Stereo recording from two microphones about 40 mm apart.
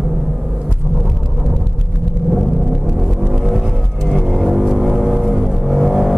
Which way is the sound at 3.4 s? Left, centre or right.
Centre.